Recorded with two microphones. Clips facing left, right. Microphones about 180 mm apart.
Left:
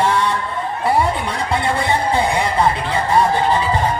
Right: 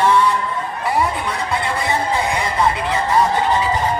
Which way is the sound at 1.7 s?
30° left (ahead or behind).